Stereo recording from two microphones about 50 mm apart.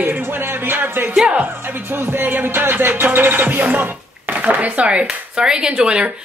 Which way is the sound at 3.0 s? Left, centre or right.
Right.